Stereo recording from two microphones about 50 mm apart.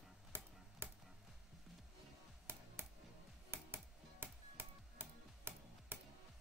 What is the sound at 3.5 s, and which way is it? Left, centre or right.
Music, right.